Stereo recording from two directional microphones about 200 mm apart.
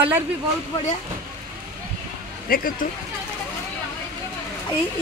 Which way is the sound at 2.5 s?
45° left (ahead or behind).